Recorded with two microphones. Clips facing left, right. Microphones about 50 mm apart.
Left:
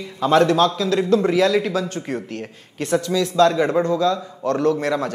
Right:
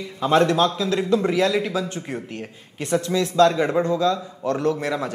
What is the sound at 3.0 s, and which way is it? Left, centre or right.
A man's voice, right.